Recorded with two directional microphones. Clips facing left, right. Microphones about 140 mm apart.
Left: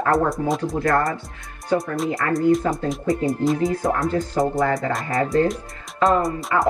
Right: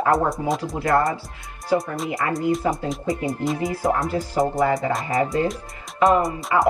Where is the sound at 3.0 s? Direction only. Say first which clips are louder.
Left 4 dB; 20° right (ahead or behind).